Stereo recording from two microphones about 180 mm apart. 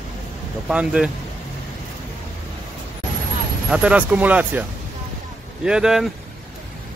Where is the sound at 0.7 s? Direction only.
5° right (ahead or behind).